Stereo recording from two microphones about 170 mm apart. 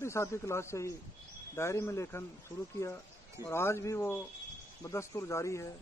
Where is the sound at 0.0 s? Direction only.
15° left (ahead or behind).